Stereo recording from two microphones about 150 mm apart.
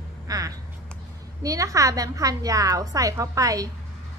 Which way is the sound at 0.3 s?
25° right (ahead or behind).